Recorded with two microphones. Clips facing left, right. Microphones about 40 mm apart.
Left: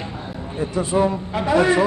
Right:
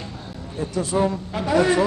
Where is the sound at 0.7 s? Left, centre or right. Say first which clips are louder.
Left 2 dB; left.